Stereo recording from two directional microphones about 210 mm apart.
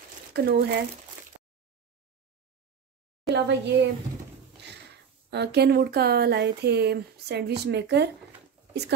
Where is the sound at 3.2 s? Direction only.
55° right (ahead or behind).